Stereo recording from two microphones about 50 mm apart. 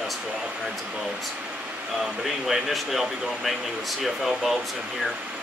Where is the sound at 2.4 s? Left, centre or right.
Centre.